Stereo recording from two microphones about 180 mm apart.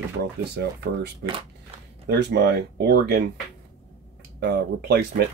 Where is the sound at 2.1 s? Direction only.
65° right (ahead or behind).